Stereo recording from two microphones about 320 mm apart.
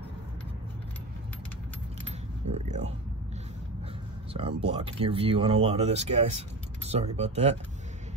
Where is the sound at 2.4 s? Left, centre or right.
Right.